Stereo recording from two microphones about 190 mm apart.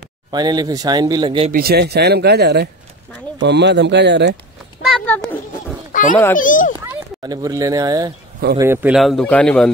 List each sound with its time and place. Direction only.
0.3 s speech: 20° right (ahead or behind)
1.5 s speech: 55° right (ahead or behind)
4.9 s a sound: 5° left (ahead or behind)
5.9 s children playing: 45° left (ahead or behind)
6.3 s a child's voice: 45° left (ahead or behind)
7.2 s speech: 20° right (ahead or behind)
8.9 s speech: centre (ahead or behind)